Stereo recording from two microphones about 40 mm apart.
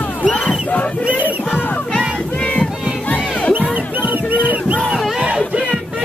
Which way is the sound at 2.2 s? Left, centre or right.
Centre.